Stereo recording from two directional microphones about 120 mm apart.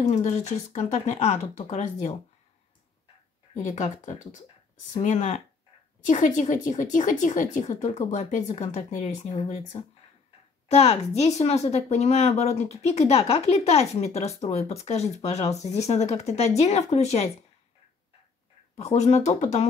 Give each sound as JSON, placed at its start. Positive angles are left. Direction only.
{"t": 0.0, "sound": "speech", "side_deg": 75}
{"t": 3.5, "sound": "speech", "side_deg": 90}
{"t": 6.0, "sound": "a woman's voice", "side_deg": 90}
{"t": 8.3, "sound": "speech", "side_deg": 70}
{"t": 18.8, "sound": "speech", "side_deg": 60}